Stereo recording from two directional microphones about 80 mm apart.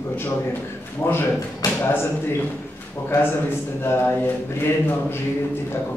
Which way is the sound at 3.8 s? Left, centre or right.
Left.